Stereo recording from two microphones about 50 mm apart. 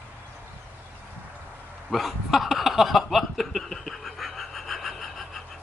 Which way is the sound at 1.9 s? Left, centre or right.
Centre.